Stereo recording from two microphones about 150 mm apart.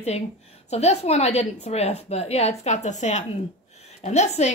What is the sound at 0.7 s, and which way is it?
A woman's voice, 45° left (ahead or behind).